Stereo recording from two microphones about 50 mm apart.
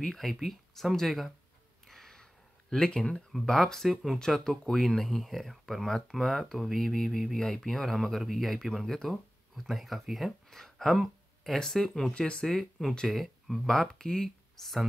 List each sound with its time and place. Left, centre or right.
0.0 s speech: centre
1.9 s a sound: centre
2.7 s speech: centre
12.1 s speech: centre
12.4 s speech: centre